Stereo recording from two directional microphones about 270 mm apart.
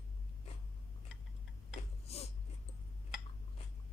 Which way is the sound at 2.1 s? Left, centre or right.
Left.